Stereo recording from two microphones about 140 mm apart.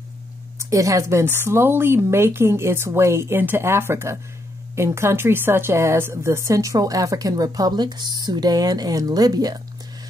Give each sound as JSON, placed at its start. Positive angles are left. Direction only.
{"t": 0.6, "sound": "a woman's voice", "side_deg": -25}